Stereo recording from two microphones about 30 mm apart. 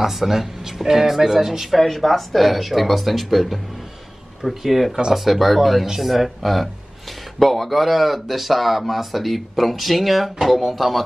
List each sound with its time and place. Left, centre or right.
0.0 s speech: centre
1.8 s speech: centre